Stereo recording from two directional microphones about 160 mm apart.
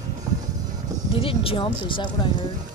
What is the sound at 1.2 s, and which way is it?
Speech, 35° left (ahead or behind).